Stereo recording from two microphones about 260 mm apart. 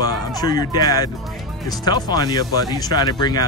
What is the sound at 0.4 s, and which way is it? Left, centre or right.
Speech, centre.